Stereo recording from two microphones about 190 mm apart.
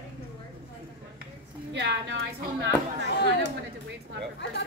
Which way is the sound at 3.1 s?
60° left (ahead or behind).